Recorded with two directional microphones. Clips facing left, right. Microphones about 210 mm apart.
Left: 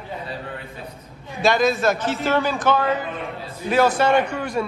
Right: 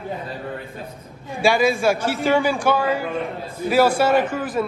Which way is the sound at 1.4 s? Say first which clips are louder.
Right 1 dB; 10° right (ahead or behind).